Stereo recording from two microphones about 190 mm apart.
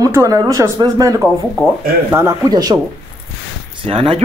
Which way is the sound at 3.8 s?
30° right (ahead or behind).